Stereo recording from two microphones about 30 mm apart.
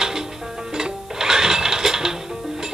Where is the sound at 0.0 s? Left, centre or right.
Right.